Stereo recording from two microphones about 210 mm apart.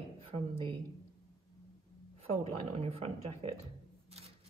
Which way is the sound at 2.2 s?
30° right (ahead or behind).